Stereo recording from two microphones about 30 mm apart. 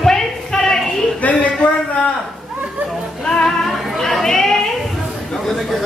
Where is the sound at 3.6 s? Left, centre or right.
Centre.